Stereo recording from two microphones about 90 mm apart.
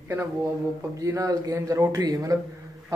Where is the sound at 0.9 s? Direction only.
40° right (ahead or behind).